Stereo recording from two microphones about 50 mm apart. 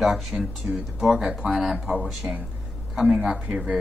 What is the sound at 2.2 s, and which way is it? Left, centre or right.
Speech, right.